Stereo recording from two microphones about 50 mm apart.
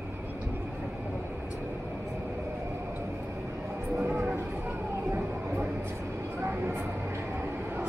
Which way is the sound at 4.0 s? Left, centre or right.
Right.